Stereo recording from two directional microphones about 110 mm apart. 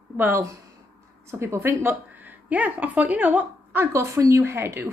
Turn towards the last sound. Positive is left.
turn(degrees=-25)  # may be behind; listen again after turning